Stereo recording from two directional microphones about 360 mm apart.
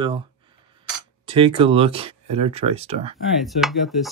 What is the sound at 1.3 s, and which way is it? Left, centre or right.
Speech, centre.